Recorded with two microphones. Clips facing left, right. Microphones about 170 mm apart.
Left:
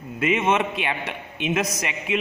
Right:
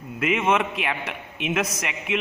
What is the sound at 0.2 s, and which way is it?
A man's voice, centre (ahead or behind).